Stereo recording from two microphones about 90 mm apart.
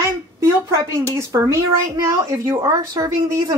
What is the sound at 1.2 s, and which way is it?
Speech, 35° right (ahead or behind).